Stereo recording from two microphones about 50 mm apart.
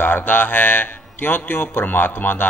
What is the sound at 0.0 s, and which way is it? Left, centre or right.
Speech, left.